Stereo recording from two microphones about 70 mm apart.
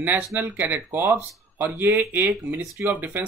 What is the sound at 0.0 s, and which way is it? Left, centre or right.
Speech, right.